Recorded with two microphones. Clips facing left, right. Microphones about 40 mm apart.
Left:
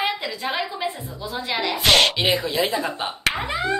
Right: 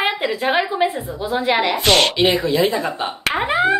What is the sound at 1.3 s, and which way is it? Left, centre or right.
Speech, right.